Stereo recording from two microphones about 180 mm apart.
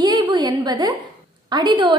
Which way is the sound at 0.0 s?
25° right (ahead or behind).